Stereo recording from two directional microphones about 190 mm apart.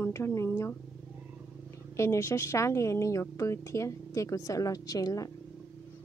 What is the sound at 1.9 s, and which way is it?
A woman's voice, 15° left (ahead or behind).